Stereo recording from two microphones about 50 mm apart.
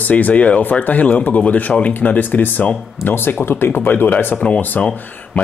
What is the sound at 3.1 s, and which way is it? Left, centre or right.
Speech, left.